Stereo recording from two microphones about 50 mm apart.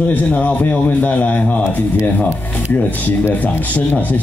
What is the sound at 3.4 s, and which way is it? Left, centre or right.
Speech, left.